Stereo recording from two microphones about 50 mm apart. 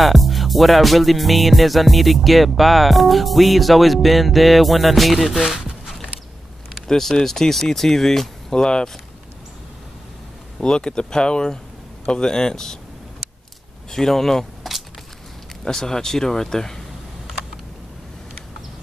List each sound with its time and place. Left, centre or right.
0.0 s music: centre
6.9 s speech: centre
10.6 s speech: centre
13.8 s speech: centre